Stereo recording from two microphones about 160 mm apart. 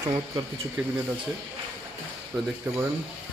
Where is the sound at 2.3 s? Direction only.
15° right (ahead or behind).